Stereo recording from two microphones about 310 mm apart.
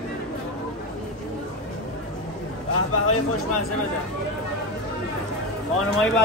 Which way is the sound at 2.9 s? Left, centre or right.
Left.